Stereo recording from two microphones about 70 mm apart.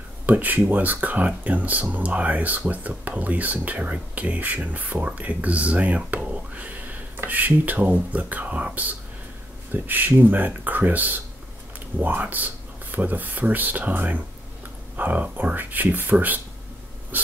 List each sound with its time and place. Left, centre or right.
0.3 s speech: right